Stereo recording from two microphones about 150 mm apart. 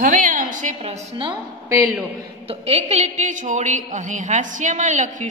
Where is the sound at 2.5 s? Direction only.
45° right (ahead or behind).